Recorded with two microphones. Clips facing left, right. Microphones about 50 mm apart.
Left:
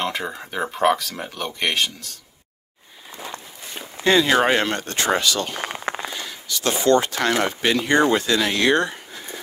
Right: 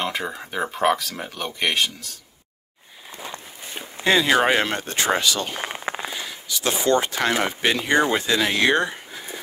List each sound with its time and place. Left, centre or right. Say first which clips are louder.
0.0 s speech: left 1 dB; centre
3.7 s speech: left 2 dB; centre
8.9 s a sound: even; centre